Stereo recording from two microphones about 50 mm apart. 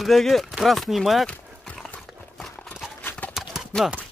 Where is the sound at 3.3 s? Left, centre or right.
Centre.